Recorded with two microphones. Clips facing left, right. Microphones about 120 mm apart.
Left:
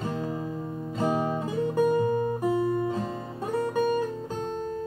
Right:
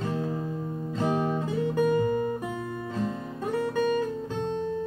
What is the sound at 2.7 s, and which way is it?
Guitar, 20° left (ahead or behind).